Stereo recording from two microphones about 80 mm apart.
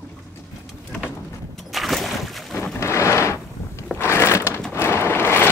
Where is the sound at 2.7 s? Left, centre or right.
Left.